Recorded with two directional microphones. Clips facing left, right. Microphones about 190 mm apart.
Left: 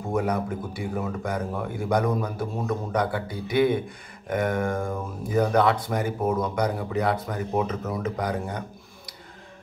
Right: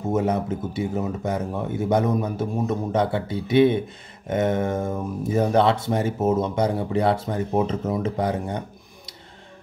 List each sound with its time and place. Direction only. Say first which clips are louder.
0.1 s speech: right 3 dB; 25° right (ahead or behind)